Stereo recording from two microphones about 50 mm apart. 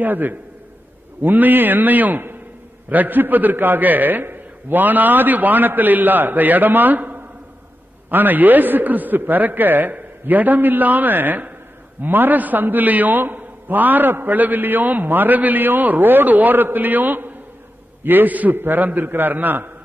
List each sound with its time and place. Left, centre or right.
0.0 s a man's voice: right